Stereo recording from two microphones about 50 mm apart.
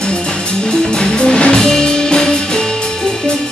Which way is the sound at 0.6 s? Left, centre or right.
Centre.